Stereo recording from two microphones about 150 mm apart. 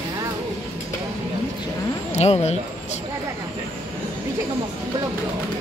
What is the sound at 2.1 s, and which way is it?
Speech, 45° left (ahead or behind).